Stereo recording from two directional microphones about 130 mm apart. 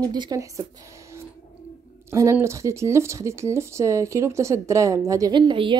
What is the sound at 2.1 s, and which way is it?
A woman's voice, 20° right (ahead or behind).